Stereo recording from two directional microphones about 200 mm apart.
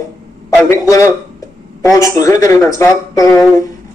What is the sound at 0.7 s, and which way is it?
A man's voice, 15° left (ahead or behind).